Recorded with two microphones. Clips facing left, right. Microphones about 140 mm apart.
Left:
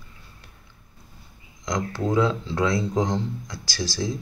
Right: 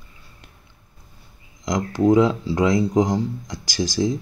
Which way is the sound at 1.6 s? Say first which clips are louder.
Right 6 dB; 15° right (ahead or behind).